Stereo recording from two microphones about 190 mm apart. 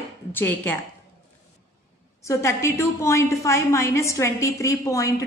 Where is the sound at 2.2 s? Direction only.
15° left (ahead or behind).